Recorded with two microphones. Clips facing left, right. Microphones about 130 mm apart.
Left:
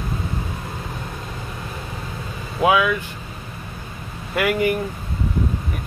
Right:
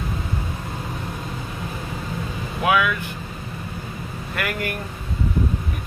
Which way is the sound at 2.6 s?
20° left (ahead or behind).